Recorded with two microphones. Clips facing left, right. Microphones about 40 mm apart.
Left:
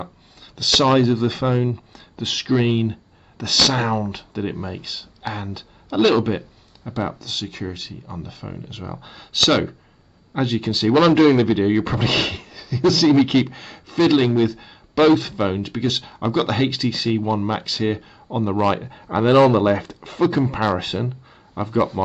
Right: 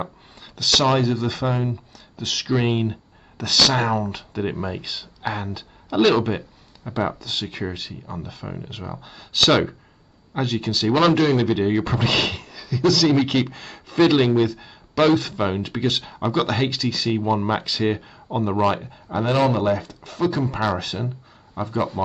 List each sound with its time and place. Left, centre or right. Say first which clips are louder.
0.6 s speech: left 3 dB; centre
2.5 s speech: left 3 dB; centre
10.3 s speech: left 2 dB; centre
18.7 s speech: left 2 dB; left
20.4 s speech: left 2 dB; centre
20.7 s speech: left 3 dB; left